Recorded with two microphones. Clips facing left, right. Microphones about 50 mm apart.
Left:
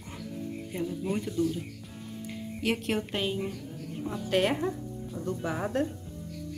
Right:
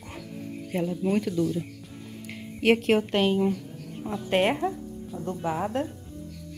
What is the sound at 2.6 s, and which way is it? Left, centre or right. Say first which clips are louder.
Speech: right 8 dB; right.